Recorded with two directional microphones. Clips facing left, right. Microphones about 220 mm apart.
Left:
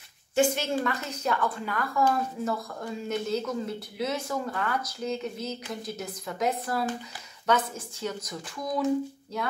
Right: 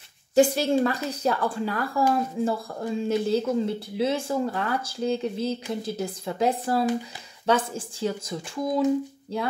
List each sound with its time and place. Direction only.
0.3 s a woman's voice: 35° right (ahead or behind)